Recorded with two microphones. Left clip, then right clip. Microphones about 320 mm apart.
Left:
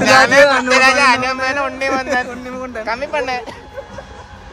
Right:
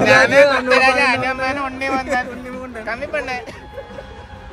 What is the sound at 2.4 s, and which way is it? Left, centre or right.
Speech, left.